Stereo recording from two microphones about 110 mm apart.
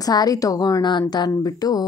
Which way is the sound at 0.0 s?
35° left (ahead or behind).